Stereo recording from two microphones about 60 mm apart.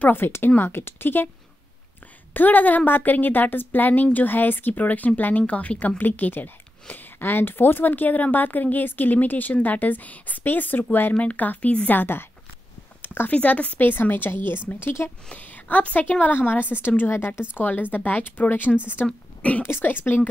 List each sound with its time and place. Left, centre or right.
0.1 s a woman's voice: left
2.3 s a woman's voice: left
11.1 s a woman's voice: left
13.0 s a sound: left
13.3 s a woman's voice: left